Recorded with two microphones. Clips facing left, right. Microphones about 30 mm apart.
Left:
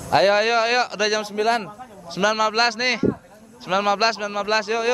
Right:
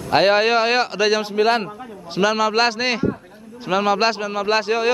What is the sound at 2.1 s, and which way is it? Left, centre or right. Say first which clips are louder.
A man's voice: right 2 dB; centre.